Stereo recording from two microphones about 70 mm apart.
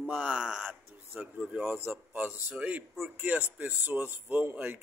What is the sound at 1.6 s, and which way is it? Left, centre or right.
Speech, right.